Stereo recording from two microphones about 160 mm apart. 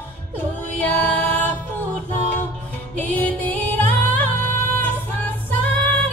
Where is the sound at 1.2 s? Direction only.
10° left (ahead or behind).